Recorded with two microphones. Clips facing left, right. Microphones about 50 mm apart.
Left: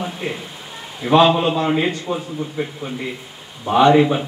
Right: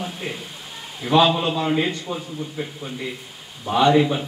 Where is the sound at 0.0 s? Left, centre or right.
Centre.